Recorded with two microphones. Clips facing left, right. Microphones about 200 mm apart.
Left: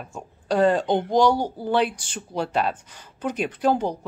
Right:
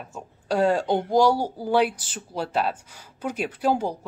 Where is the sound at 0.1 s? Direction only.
10° right (ahead or behind).